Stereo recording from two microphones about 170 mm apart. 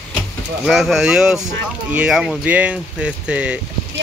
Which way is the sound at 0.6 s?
Centre (ahead or behind).